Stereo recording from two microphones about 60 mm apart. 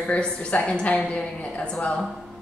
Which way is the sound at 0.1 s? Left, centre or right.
Centre.